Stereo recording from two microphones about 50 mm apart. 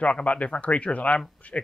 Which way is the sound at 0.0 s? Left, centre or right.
Left.